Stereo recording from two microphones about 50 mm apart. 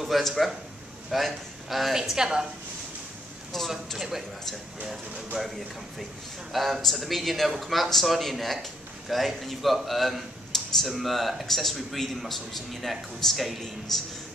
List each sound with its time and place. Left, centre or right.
0.0 s speech: centre
3.5 s a sound: centre
4.8 s speech: centre
6.5 s speech: centre